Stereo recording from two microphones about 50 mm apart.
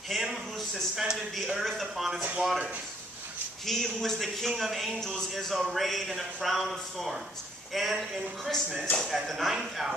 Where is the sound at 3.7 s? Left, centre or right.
Centre.